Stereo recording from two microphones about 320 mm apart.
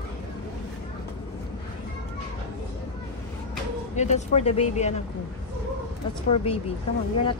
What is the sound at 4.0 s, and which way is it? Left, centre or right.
Speech, left.